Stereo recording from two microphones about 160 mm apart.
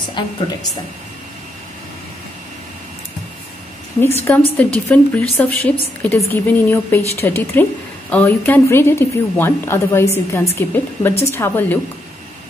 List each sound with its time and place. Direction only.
4.0 s a woman's voice: 15° left (ahead or behind)